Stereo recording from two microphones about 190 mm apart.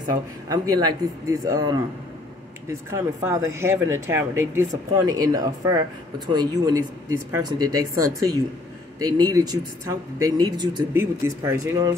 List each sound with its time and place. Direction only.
0.5 s speech: 20° right (ahead or behind)
9.0 s speech: 20° right (ahead or behind)